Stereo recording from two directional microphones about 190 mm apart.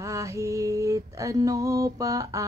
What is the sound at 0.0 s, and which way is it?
Female singing, 15° right (ahead or behind).